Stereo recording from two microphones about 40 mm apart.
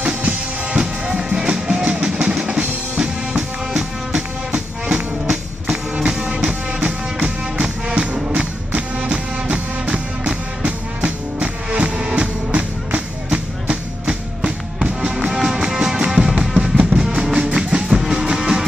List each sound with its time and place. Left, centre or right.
0.0 s music: right
1.1 s music: right